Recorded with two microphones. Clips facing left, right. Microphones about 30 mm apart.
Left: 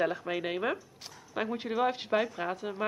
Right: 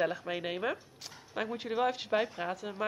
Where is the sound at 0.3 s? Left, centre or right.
Centre.